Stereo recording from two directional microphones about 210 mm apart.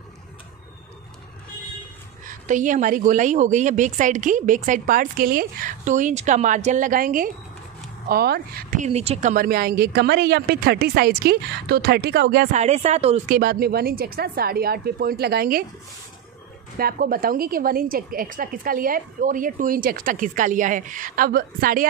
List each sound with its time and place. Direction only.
2.2 s a woman's voice: 35° right (ahead or behind)
13.4 s speech: 45° right (ahead or behind)
16.7 s speech: 45° right (ahead or behind)